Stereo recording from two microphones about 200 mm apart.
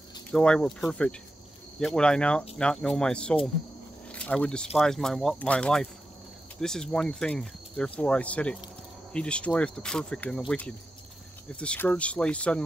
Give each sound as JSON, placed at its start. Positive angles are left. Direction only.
{"t": 0.3, "sound": "speech", "side_deg": 5}
{"t": 11.4, "sound": "speech", "side_deg": 5}